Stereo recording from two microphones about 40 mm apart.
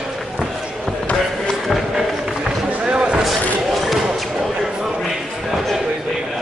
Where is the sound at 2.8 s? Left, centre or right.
Right.